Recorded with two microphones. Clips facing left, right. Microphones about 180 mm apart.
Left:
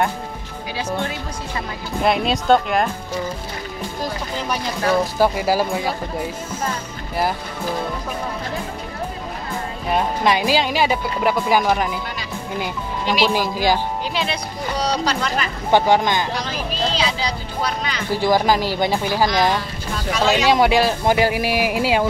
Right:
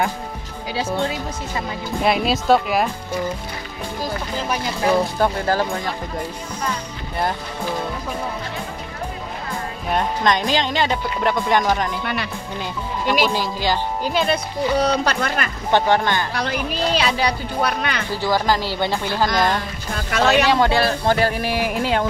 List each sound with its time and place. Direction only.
2.0 s speech: centre (ahead or behind)
5.0 s speech: 5° left (ahead or behind)
9.8 s speech: 5° left (ahead or behind)
13.0 s speech: 50° right (ahead or behind)
13.3 s speech: 15° left (ahead or behind)
14.1 s speech: 50° right (ahead or behind)
15.7 s speech: 15° left (ahead or behind)
16.3 s speech: 60° right (ahead or behind)
18.1 s speech: 15° left (ahead or behind)
20.1 s speech: 60° right (ahead or behind)
20.4 s speech: 15° left (ahead or behind)